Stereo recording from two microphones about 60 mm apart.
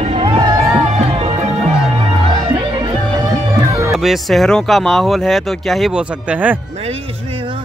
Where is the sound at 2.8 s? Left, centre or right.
Right.